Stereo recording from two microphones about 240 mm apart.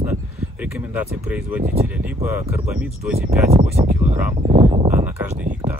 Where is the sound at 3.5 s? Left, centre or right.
Right.